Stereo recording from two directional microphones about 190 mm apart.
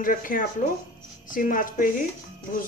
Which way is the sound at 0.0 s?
45° left (ahead or behind).